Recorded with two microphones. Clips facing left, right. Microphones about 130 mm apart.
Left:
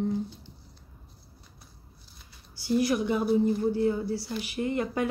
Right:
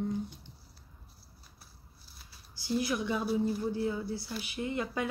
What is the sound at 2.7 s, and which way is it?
Speech, 50° left (ahead or behind).